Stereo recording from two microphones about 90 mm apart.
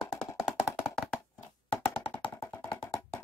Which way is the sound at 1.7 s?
75° left (ahead or behind).